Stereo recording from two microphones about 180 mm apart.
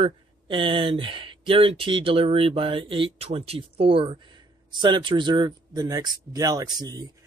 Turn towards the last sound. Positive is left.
turn(degrees=-20)  # may be behind; listen again after turning